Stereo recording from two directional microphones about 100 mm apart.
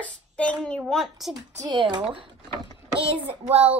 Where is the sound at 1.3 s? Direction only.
45° right (ahead or behind).